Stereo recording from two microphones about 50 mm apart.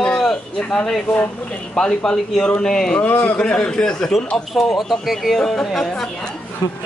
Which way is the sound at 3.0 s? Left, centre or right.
Left.